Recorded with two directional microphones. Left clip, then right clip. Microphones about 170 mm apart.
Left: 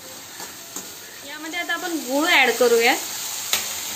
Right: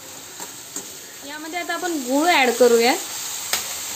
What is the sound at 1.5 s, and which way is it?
Speech, 40° right (ahead or behind).